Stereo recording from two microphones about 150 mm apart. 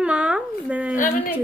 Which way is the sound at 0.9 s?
60° left (ahead or behind).